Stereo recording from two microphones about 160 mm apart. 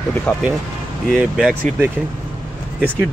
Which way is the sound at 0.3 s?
15° left (ahead or behind).